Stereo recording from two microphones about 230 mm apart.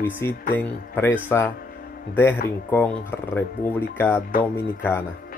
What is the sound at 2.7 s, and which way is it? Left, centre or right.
Speech, centre.